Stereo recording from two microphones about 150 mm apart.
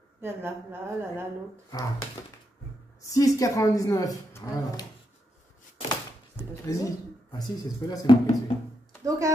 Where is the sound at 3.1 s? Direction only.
25° left (ahead or behind).